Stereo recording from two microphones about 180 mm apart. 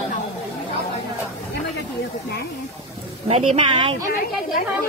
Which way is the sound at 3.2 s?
35° right (ahead or behind).